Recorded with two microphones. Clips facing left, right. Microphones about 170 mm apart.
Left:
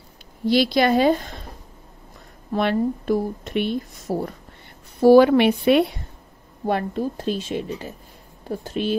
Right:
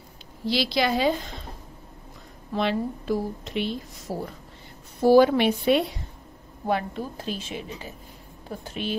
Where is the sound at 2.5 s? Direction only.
55° left (ahead or behind).